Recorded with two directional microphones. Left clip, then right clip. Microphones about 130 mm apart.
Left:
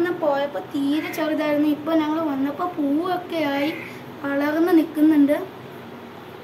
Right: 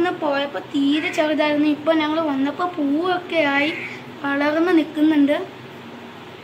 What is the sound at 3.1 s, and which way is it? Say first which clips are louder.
Speech: right 4 dB; 50° right (ahead or behind).